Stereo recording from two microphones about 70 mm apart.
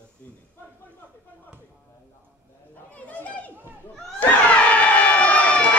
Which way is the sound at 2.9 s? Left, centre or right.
Left.